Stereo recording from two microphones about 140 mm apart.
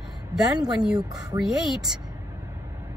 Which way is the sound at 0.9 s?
25° right (ahead or behind).